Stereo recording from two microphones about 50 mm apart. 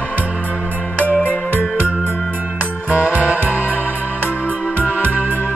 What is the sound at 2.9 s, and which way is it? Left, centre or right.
Music, right.